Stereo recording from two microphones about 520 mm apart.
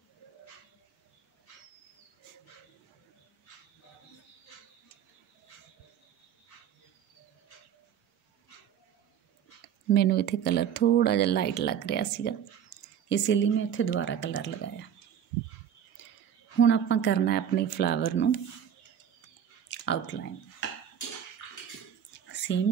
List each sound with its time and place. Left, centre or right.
9.9 s speech: centre
12.7 s a sound: left
13.1 s speech: left
16.5 s speech: left
19.7 s a sound: left
20.6 s dishes: left
22.3 s whispering: centre